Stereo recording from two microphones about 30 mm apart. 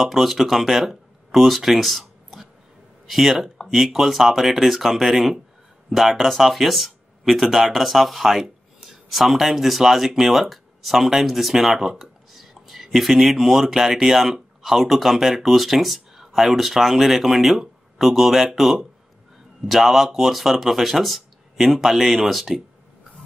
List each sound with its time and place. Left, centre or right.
0.0 s speech: centre
0.8 s a sound: centre
3.1 s speech: centre